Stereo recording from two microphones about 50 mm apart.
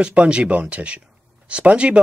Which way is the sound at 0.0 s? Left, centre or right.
Right.